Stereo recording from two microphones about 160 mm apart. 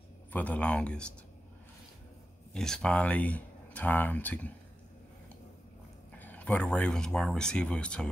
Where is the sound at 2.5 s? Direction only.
5° left (ahead or behind).